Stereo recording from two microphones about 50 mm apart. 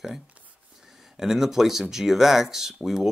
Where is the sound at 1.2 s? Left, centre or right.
Centre.